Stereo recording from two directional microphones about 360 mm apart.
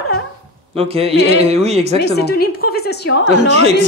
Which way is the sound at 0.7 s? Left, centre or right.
Centre.